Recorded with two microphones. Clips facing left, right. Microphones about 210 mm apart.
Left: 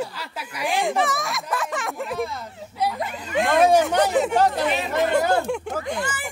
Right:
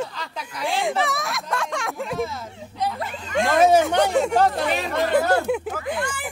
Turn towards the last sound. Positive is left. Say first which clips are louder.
# even
turn(degrees=0)  # may be behind; listen again after turning